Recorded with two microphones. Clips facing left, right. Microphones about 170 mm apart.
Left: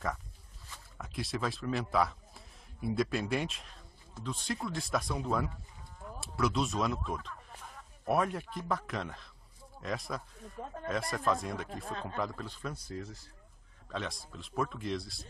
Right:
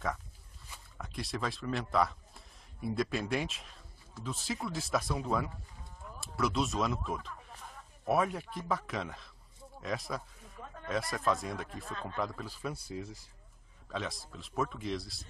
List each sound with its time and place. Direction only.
0.9 s a man's voice: centre (ahead or behind)
10.6 s speech: 35° left (ahead or behind)
10.9 s speech: centre (ahead or behind)